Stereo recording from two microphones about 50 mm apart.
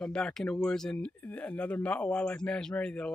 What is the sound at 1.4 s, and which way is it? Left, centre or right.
Speech, left.